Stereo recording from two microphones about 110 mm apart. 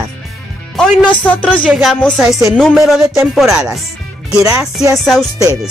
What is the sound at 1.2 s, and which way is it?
Speech, 15° left (ahead or behind).